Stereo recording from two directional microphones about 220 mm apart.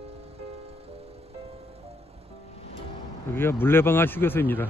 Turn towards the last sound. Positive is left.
turn(degrees=10)  # may be behind; listen again after turning